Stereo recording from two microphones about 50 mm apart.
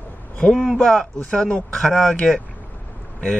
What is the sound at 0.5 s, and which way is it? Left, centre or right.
Speech, centre.